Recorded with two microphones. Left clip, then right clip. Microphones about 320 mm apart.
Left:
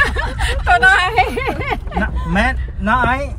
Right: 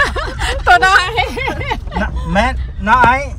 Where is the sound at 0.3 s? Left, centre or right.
Right.